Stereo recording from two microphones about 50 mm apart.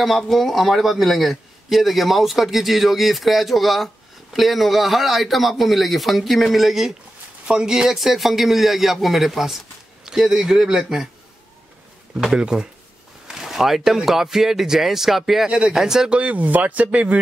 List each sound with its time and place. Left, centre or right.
0.0 s a man's voice: centre
12.2 s speech: centre
15.4 s speech: centre
16.1 s speech: right